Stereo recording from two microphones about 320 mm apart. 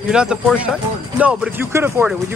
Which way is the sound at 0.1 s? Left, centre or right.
Centre.